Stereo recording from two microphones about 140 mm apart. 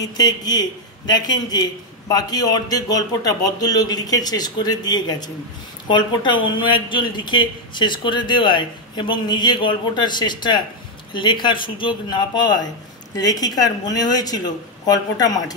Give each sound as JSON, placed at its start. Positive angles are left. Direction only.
{"t": 0.0, "sound": "a man's voice", "side_deg": 25}